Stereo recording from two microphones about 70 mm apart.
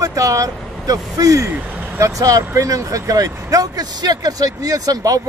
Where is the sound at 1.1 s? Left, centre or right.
Right.